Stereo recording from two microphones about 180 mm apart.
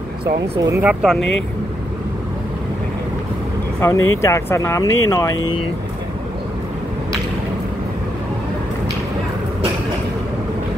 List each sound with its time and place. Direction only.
0.6 s speech: 15° right (ahead or behind)
3.8 s speech: 15° left (ahead or behind)